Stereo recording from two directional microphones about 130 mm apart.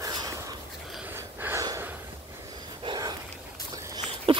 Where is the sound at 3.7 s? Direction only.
30° right (ahead or behind).